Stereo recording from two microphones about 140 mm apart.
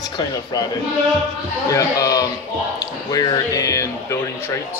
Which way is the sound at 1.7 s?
25° left (ahead or behind).